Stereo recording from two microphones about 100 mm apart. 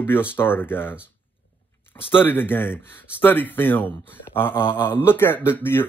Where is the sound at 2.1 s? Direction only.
20° left (ahead or behind).